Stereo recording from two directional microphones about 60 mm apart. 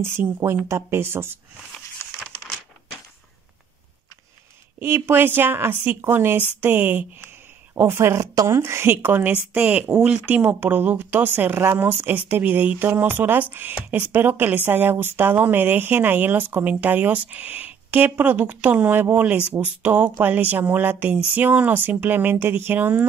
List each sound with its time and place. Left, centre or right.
0.2 s speech: right
4.7 s speech: right
7.7 s speech: right